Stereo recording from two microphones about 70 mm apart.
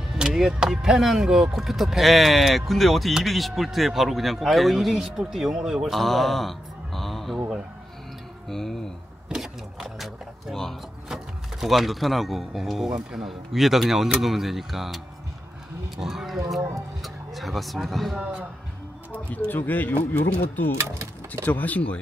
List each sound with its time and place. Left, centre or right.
0.1 s speech: centre
8.5 s speech: centre
9.3 s a sound: centre
11.6 s speech: centre
16.0 s speech: centre
18.2 s a man's voice: centre
19.1 s speech: left